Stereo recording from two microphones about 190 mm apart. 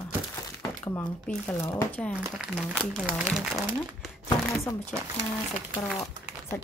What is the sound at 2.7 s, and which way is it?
Speech, 5° right (ahead or behind).